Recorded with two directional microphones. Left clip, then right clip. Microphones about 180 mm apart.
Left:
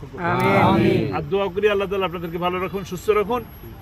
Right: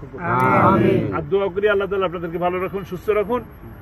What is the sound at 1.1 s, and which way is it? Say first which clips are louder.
A man's voice: right 2 dB; 20° left (ahead or behind).